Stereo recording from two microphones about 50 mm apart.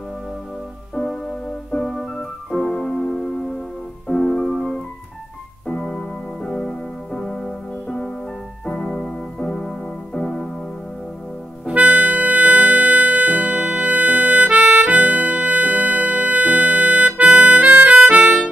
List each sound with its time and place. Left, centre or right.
0.9 s music: centre
5.7 s keyboard: centre
8.6 s keyboard: centre
11.6 s harmonica: right
18.0 s music: right